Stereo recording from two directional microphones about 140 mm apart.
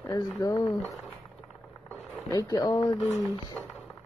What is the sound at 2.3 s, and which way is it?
Speech, 25° left (ahead or behind).